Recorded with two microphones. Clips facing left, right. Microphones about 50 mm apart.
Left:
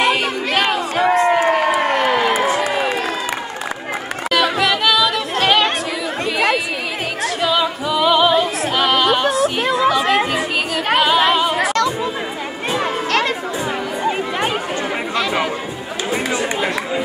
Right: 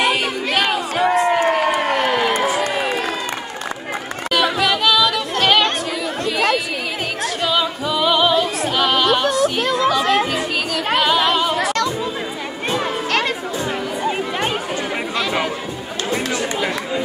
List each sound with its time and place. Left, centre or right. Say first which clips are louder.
0.0 s crowd: left 1 dB; centre
4.3 s chatter: left 1 dB; centre
7.2 s music: left 2 dB; centre
9.6 s a sound: left 1 dB; centre
9.8 s children playing: left 1 dB; centre
11.0 s singing: left 2 dB; centre
16.1 s chatter: left 2 dB; centre